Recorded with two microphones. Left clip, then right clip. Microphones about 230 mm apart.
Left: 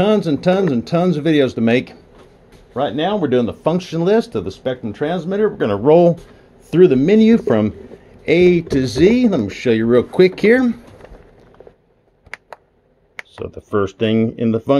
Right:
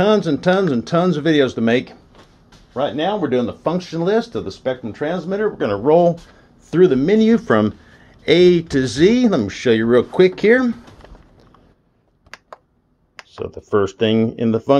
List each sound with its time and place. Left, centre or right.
0.0 s speech: centre
2.7 s speech: left
6.7 s speech: left
7.4 s speech: centre
13.4 s speech: centre